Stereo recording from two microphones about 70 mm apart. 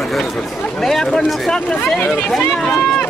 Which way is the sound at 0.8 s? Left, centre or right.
Centre.